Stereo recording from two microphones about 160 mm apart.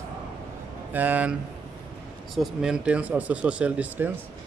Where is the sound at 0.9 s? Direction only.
10° right (ahead or behind).